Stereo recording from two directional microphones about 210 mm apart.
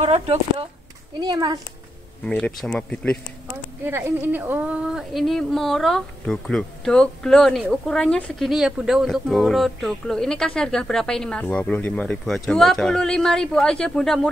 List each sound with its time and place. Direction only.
0.0 s speech: 30° right (ahead or behind)
2.2 s speech: 5° left (ahead or behind)
3.8 s speech: 10° right (ahead or behind)